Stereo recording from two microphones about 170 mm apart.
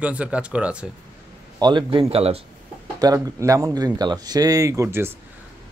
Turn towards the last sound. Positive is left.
turn(degrees=-15)  # may be behind; listen again after turning